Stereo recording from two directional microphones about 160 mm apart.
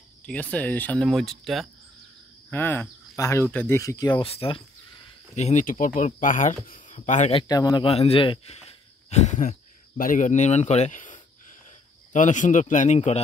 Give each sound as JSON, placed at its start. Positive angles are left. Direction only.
{"t": 0.2, "sound": "speech", "side_deg": 10}
{"t": 2.5, "sound": "speech", "side_deg": 10}
{"t": 5.3, "sound": "speech", "side_deg": 50}
{"t": 7.3, "sound": "speech", "side_deg": 25}
{"t": 7.8, "sound": "speech", "side_deg": 35}